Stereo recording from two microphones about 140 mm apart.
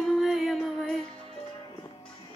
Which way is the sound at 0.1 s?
Centre (ahead or behind).